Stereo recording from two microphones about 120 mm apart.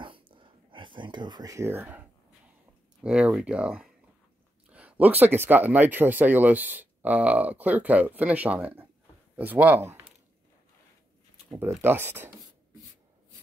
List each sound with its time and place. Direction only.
0.0 s a sound: 45° right (ahead or behind); by 2.0 s 15° right (ahead or behind)
3.0 s speech: 10° right (ahead or behind)
11.5 s speech: 20° right (ahead or behind)